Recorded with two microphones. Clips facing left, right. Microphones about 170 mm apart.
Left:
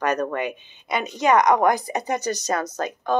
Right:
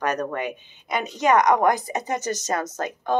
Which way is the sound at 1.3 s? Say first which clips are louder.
Left 1 dB; 20° left (ahead or behind).